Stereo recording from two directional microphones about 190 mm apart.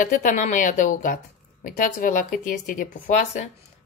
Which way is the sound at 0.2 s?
40° left (ahead or behind).